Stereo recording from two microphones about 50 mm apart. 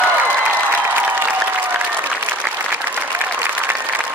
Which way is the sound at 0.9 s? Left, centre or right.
Right.